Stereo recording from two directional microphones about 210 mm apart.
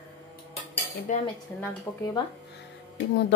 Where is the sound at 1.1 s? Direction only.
35° left (ahead or behind).